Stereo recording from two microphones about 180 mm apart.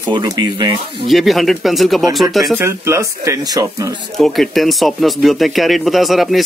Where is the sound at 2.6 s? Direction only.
15° right (ahead or behind).